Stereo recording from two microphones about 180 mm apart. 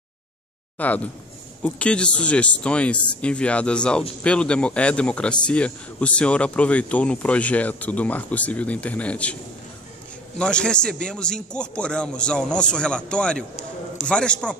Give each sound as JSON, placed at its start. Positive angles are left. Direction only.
{"t": 0.7, "sound": "a man's voice", "side_deg": 10}